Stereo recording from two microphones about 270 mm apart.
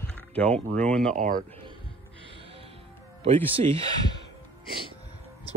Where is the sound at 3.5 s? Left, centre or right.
Right.